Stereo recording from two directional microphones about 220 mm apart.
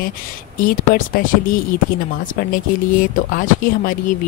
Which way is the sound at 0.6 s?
40° left (ahead or behind).